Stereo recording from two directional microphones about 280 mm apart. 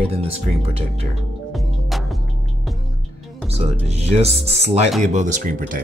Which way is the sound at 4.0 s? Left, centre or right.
Right.